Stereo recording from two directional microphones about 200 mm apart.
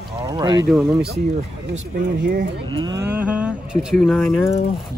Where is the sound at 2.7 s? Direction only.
20° right (ahead or behind).